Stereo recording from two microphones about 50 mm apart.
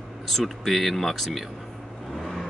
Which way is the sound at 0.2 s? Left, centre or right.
Centre.